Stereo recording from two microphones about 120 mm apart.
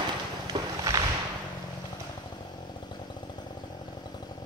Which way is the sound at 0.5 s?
35° right (ahead or behind).